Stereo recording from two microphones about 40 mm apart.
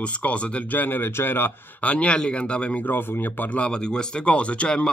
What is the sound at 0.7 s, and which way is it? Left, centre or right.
Speech, left.